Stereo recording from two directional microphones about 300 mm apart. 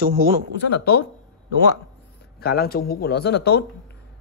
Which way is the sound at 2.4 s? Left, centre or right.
Left.